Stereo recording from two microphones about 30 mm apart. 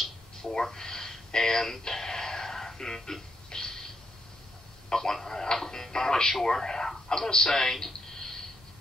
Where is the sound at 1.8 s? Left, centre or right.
Centre.